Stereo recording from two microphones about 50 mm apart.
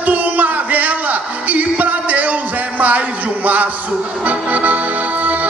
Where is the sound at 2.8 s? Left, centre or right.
Right.